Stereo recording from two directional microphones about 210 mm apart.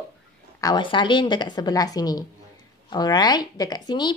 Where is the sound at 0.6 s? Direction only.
20° left (ahead or behind).